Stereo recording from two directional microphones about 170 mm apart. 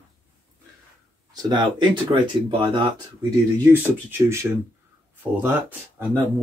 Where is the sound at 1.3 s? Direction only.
25° right (ahead or behind).